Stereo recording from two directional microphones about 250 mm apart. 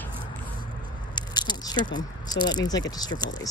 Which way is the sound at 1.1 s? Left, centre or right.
Centre.